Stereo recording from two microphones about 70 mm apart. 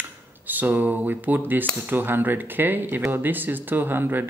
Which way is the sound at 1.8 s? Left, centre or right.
Right.